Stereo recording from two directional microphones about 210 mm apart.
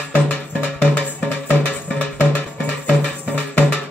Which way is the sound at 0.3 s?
5° left (ahead or behind).